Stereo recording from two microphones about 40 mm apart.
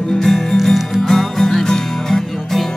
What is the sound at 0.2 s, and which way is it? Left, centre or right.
Music, centre.